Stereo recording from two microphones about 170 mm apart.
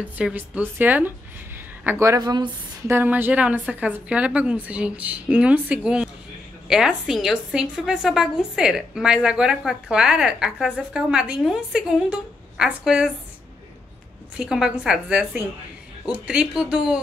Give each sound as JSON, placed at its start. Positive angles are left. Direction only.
{"t": 0.2, "sound": "a woman's voice", "side_deg": -10}
{"t": 3.0, "sound": "a woman's voice", "side_deg": -10}
{"t": 14.3, "sound": "a woman's voice", "side_deg": -5}